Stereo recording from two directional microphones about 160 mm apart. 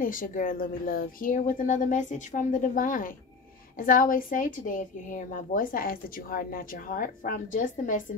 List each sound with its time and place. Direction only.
0.0 s a woman's voice: 60° left (ahead or behind)